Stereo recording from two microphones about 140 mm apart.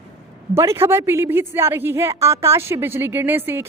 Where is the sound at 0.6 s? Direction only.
20° right (ahead or behind).